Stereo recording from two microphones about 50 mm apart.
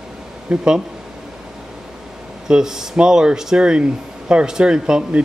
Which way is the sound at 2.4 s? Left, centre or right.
Centre.